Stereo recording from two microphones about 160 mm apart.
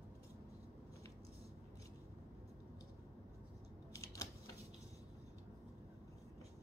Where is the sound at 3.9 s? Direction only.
20° left (ahead or behind).